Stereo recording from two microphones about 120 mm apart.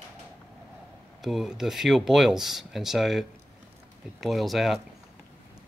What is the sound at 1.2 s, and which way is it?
Speech, 5° right (ahead or behind).